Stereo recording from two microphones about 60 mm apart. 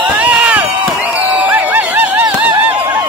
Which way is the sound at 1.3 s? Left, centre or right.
Right.